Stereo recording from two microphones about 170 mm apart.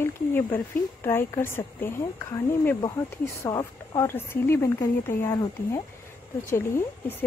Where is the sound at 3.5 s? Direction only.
20° left (ahead or behind).